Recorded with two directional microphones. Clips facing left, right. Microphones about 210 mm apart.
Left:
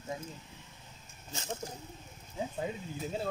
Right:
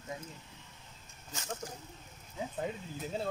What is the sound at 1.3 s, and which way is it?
Speech, 25° left (ahead or behind).